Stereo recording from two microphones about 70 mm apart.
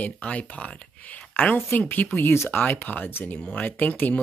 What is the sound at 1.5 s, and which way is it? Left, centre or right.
Speech, left.